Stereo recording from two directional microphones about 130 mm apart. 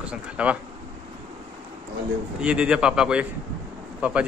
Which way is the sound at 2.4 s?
5° right (ahead or behind).